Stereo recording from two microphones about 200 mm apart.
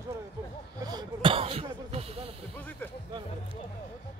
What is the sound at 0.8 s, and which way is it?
Speech, 20° right (ahead or behind).